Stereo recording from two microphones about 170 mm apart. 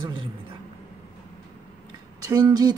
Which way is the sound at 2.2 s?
20° right (ahead or behind).